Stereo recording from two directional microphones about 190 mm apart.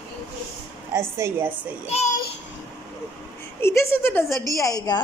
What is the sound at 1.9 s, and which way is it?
Speech, 35° left (ahead or behind).